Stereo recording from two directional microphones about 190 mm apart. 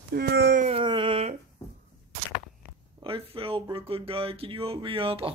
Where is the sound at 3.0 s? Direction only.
30° right (ahead or behind).